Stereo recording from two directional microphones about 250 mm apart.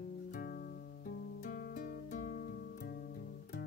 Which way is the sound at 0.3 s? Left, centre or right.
Left.